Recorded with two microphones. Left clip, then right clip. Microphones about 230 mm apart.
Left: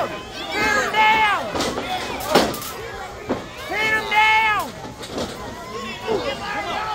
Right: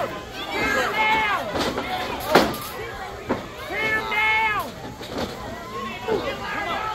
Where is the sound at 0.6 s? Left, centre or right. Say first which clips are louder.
Left 5 dB; left.